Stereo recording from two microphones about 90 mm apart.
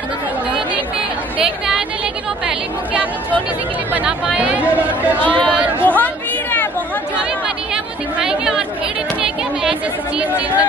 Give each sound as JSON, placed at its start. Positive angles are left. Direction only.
{"t": 1.4, "sound": "a sound", "side_deg": -5}
{"t": 2.4, "sound": "speech", "side_deg": -15}
{"t": 5.2, "sound": "speech", "side_deg": 20}
{"t": 7.4, "sound": "chatter", "side_deg": -10}
{"t": 9.2, "sound": "speech", "side_deg": -10}